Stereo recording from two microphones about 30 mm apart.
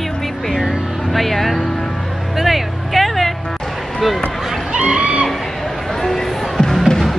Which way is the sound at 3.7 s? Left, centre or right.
Centre.